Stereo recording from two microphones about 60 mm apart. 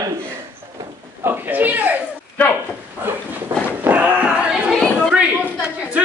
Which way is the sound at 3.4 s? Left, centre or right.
Right.